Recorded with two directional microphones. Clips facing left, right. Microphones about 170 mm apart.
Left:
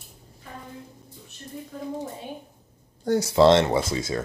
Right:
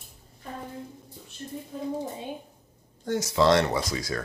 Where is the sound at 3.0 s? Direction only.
35° left (ahead or behind).